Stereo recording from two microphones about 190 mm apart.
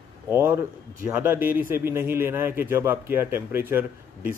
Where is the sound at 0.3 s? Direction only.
10° right (ahead or behind).